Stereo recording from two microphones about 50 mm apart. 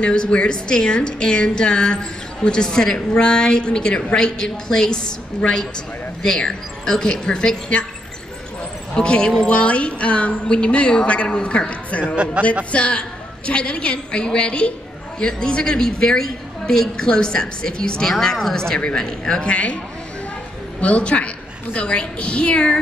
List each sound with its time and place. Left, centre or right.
0.0 s a woman's voice: centre
8.9 s a woman's voice: centre
20.8 s a woman's voice: left